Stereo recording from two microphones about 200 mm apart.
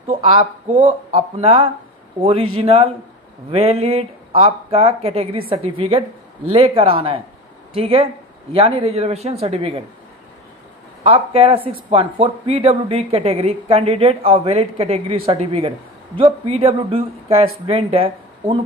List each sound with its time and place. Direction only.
0.0 s a woman's voice: 30° right (ahead or behind)
11.1 s a woman's voice: 30° right (ahead or behind)